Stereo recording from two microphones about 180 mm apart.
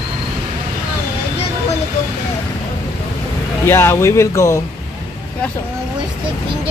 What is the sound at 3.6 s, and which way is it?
Speech, 15° left (ahead or behind).